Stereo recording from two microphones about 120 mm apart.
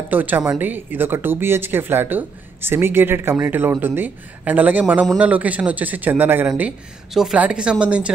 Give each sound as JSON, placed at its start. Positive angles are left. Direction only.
{"t": 0.1, "sound": "speech", "side_deg": -15}